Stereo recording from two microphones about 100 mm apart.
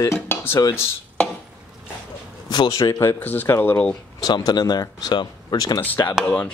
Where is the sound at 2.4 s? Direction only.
40° left (ahead or behind).